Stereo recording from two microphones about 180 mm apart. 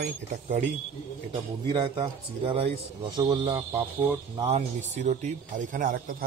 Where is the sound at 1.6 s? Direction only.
30° right (ahead or behind).